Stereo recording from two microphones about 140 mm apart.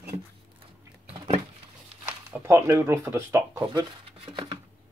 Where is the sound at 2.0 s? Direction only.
20° right (ahead or behind).